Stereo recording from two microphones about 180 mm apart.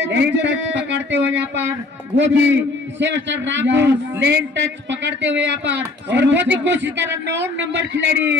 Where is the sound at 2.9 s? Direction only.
85° right.